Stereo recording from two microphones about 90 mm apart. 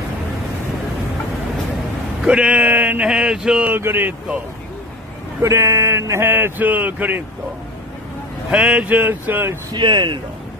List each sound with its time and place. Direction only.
2.2 s speech: 10° right (ahead or behind)
3.7 s speech: 25° right (ahead or behind)
5.4 s speech: 35° right (ahead or behind)
8.5 s speech: 10° right (ahead or behind)
9.7 s speech: 60° right (ahead or behind)